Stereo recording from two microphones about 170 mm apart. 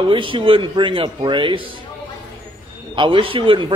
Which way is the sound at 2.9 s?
30° right (ahead or behind).